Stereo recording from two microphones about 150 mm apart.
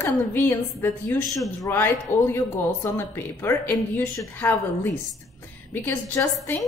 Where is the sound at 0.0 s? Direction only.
15° left (ahead or behind).